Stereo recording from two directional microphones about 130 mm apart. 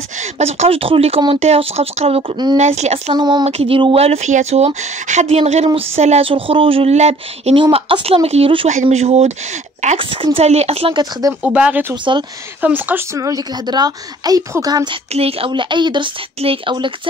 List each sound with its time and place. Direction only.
0.2 s speech: 55° right (ahead or behind)
2.5 s speech: 60° right (ahead or behind)
3.1 s speech: 35° right (ahead or behind)
3.4 s speech: 50° right (ahead or behind)
9.9 s speech: 45° right (ahead or behind)
10.9 s speech: 30° right (ahead or behind)
11.4 s speech: 10° right (ahead or behind)
11.9 s speech: 35° right (ahead or behind)
12.6 s speech: 15° right (ahead or behind); by 15.0 s 30° right (ahead or behind)
15.1 s speech: 50° right (ahead or behind)